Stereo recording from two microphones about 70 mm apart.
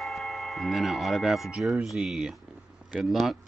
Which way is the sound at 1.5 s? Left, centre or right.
Centre.